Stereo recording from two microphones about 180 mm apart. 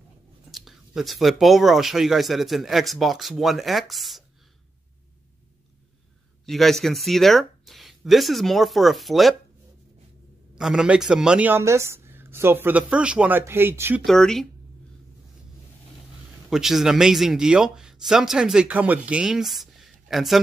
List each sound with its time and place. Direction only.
0.5 s speech: centre (ahead or behind)
6.4 s speech: centre (ahead or behind)
10.5 s speech: 5° right (ahead or behind)
14.0 s speech: 5° left (ahead or behind)
16.4 s speech: centre (ahead or behind)